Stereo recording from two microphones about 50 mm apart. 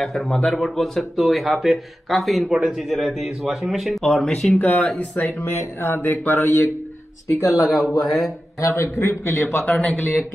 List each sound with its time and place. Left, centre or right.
0.0 s speech: centre
4.0 s speech: centre
4.6 s speech: left
5.4 s speech: left
5.9 s speech: left
7.3 s a man's voice: left
7.7 s speech: centre
8.5 s a man's voice: left
9.7 s speech: left